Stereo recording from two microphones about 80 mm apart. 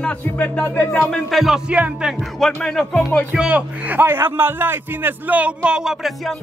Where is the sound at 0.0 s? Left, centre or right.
Centre.